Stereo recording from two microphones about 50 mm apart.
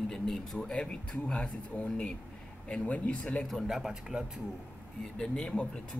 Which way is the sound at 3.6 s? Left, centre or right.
Centre.